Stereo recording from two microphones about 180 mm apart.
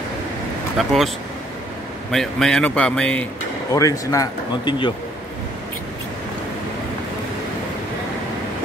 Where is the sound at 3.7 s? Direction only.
20° left (ahead or behind).